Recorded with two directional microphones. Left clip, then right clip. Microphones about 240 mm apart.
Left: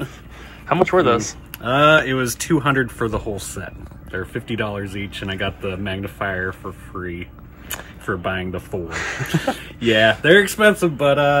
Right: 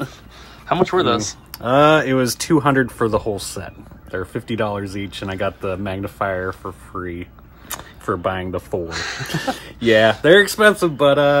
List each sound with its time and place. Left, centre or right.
0.7 s speech: centre
8.8 s speech: centre
9.3 s speech: right